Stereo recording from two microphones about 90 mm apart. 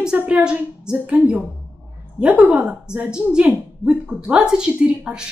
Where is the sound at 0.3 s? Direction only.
10° right (ahead or behind).